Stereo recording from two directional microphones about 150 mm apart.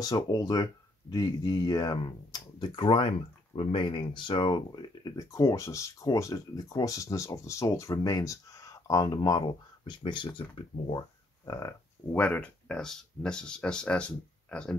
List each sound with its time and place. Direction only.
0.0 s speech: 25° left (ahead or behind)
12.2 s speech: 10° left (ahead or behind)